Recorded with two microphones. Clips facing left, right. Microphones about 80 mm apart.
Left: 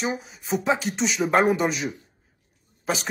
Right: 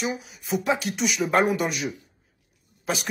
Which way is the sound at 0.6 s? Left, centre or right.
Centre.